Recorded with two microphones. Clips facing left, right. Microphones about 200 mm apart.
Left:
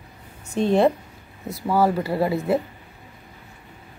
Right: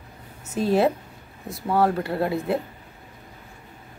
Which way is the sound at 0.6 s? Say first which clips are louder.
Left 2 dB; 5° right (ahead or behind).